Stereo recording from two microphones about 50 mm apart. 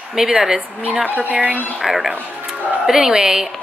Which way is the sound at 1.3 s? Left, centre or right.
Right.